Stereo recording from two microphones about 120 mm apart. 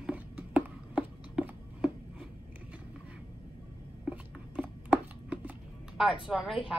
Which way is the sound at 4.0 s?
10° right (ahead or behind).